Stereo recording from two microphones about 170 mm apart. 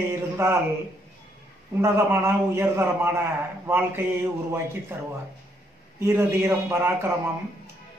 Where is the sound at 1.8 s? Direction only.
15° right (ahead or behind).